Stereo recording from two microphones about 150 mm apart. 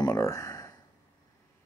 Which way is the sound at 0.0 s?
25° left (ahead or behind).